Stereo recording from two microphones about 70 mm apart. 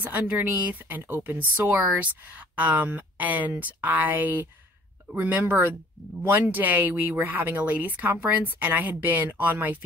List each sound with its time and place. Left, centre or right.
0.0 s speech: right
5.1 s speech: right